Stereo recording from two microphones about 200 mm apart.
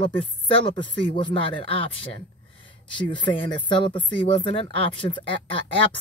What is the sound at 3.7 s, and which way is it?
Speech, 25° left (ahead or behind).